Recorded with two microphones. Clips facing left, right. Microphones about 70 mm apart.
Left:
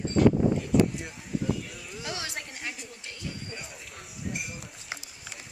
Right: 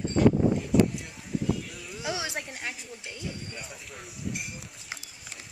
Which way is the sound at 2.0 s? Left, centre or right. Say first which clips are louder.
Right 4 dB; centre.